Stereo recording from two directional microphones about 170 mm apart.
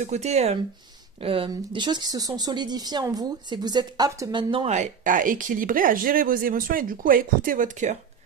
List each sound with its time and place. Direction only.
0.0 s speech: 40° right (ahead or behind)
4.7 s speech: 50° right (ahead or behind)